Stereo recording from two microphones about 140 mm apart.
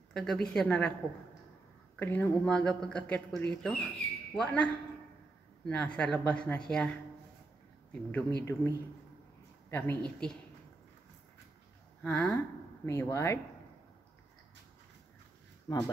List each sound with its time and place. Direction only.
0.1 s a woman's voice: 5° left (ahead or behind)
2.0 s speech: 10° left (ahead or behind)
5.7 s speech: 10° left (ahead or behind)
12.0 s speech: 10° left (ahead or behind)
15.7 s speech: 30° left (ahead or behind)